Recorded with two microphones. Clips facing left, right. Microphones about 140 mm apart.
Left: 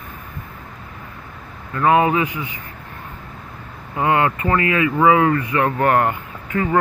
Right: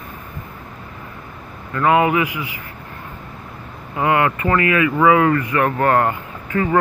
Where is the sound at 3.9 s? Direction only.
25° left (ahead or behind).